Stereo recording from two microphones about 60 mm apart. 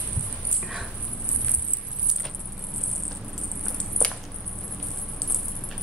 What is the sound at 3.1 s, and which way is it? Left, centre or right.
Rodents, centre.